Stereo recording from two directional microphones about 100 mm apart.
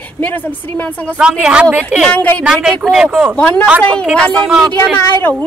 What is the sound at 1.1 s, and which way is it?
Speech, 10° right (ahead or behind).